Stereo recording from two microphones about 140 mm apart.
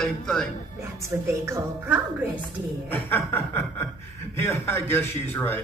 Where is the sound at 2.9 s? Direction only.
15° left (ahead or behind).